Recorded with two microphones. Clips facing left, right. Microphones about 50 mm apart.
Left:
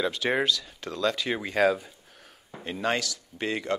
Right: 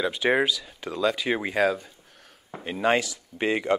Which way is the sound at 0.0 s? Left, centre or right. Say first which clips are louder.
Right 3 dB; centre.